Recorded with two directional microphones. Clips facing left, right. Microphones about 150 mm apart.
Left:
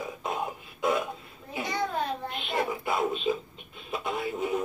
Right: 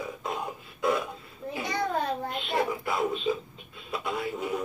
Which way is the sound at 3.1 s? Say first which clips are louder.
Even; 20° left (ahead or behind).